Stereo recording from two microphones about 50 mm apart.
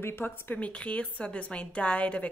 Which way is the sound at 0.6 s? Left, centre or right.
Left.